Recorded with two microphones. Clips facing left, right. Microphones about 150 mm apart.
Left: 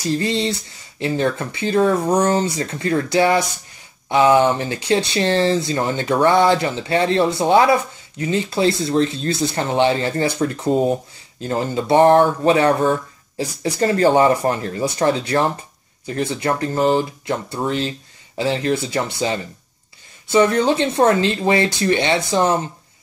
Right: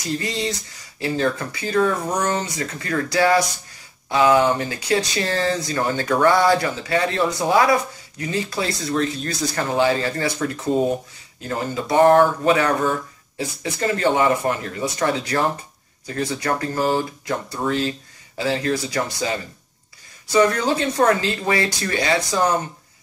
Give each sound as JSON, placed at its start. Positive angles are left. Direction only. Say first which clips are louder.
{"t": 0.0, "sound": "speech", "louder": "left 5 dB", "side_deg": 30}